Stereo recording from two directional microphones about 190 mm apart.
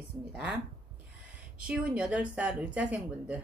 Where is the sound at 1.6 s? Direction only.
5° right (ahead or behind).